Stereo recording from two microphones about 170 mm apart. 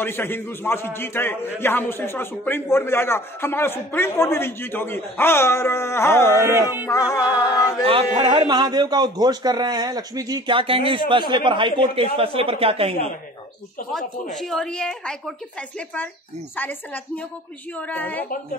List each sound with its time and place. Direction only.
0.0 s a man's voice: 10° left (ahead or behind)
6.3 s speech: 15° right (ahead or behind)
6.9 s music: 20° left (ahead or behind)
7.2 s speech: 5° right (ahead or behind)
7.8 s a man's voice: 30° right (ahead or behind)
14.3 s a woman's voice: centre (ahead or behind)